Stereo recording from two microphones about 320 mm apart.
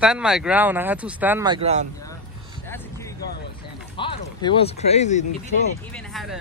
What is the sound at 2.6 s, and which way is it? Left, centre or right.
Vehicle, centre.